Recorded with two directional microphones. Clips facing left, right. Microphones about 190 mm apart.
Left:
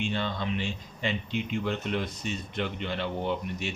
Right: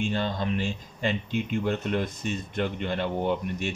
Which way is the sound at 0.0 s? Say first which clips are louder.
Right 3 dB; 45° right (ahead or behind).